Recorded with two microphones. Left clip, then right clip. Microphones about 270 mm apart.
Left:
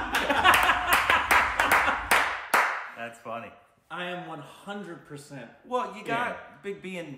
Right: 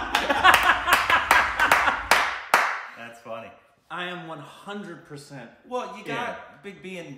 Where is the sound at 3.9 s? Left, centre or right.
Centre.